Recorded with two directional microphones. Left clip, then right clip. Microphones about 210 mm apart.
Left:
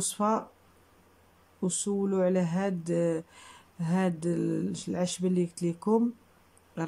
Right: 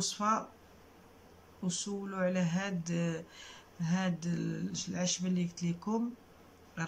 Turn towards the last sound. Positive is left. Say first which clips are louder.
# left 5 dB
turn(degrees=30)  # may be behind; listen again after turning